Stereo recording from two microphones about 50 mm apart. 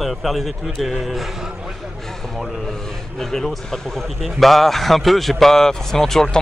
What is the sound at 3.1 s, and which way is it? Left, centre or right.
A man's voice, centre.